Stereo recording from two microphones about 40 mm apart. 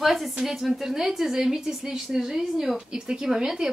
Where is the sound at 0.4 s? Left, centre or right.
Centre.